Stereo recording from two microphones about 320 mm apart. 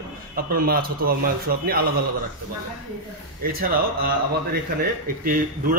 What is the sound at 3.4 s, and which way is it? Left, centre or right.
A man's voice, right.